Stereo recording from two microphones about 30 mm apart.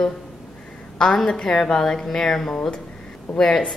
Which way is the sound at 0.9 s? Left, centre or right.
Left.